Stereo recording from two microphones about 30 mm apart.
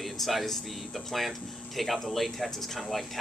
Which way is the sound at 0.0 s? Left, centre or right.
Centre.